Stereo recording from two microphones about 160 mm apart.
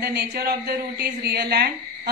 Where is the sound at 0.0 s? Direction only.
90° right.